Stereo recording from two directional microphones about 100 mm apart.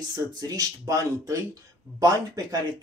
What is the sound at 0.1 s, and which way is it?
Speech, 35° right (ahead or behind).